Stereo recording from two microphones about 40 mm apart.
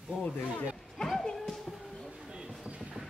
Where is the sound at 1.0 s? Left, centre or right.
Centre.